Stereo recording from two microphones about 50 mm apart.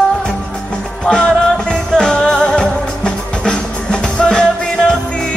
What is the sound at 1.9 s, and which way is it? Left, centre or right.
Music, centre.